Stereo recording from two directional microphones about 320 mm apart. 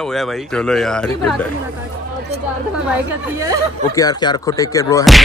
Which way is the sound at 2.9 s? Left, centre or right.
Centre.